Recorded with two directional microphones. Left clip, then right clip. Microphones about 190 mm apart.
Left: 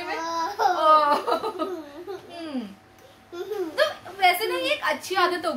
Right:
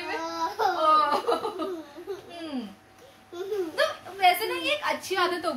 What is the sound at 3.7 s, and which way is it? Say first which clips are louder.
A woman's voice: left 5 dB; 10° left (ahead or behind).